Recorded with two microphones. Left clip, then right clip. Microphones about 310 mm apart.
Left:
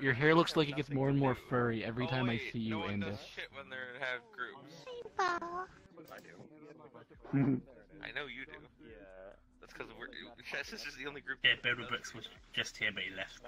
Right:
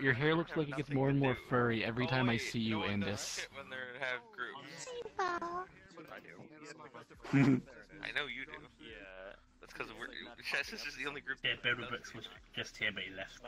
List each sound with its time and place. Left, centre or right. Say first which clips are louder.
0.0 s speech: left 1 dB; centre
0.4 s speech: left 7 dB; left
0.9 s speech: even; centre
5.1 s a child's voice: left 2 dB; centre
7.2 s speech: right 3 dB; right
8.0 s speech: right 3 dB; centre
9.8 s speech: right 2 dB; centre
11.4 s speech: left 4 dB; centre